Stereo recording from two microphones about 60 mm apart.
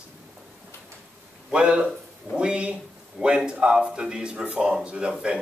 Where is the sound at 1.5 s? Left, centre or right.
Centre.